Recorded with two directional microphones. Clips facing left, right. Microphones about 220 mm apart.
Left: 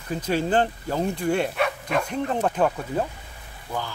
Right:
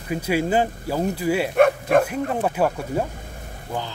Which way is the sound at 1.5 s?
50° right (ahead or behind).